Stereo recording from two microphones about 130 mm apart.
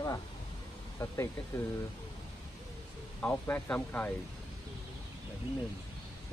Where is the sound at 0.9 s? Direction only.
20° left (ahead or behind).